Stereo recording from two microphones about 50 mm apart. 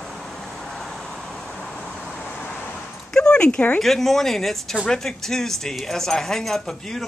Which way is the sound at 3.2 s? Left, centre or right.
Centre.